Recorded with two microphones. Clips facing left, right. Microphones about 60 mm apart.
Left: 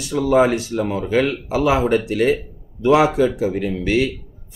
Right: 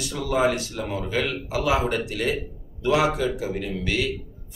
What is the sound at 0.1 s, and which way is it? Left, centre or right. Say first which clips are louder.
Speech: left 7 dB; left.